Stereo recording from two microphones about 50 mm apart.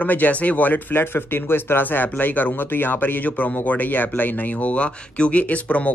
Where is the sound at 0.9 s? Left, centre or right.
Left.